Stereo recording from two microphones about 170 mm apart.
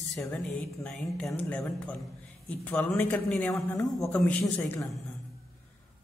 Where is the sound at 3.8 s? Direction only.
20° left (ahead or behind).